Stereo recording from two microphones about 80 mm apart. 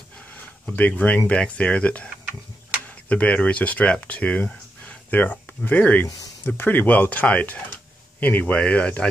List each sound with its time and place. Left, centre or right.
0.7 s speech: centre